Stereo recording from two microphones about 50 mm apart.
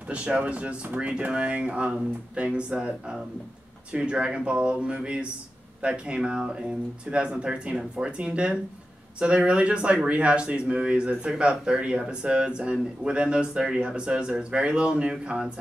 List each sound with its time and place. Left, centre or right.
0.1 s speech: right
3.9 s speech: right